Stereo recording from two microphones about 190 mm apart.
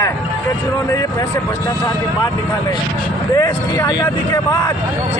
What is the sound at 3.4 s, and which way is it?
Speech, 20° left (ahead or behind).